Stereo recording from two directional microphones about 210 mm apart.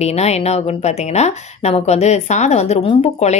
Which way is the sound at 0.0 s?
30° left (ahead or behind).